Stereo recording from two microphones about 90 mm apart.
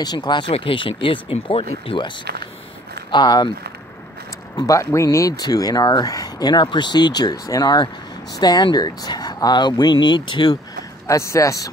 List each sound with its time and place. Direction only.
0.0 s speech: 55° left (ahead or behind); by 2.1 s 75° left (ahead or behind)
3.1 s speech: 55° left (ahead or behind)
4.6 s speech: 40° left (ahead or behind); by 10.5 s 60° left (ahead or behind)
11.1 s speech: 35° left (ahead or behind)